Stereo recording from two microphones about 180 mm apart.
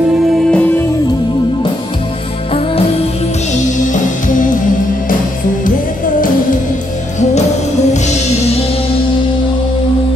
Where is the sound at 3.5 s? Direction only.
45° left (ahead or behind).